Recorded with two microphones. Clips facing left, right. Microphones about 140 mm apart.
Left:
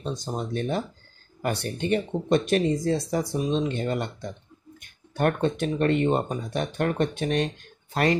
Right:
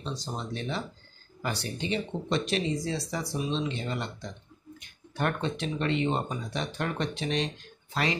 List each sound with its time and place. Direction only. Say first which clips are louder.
0.0 s speech: left 5 dB; 50° left (ahead or behind)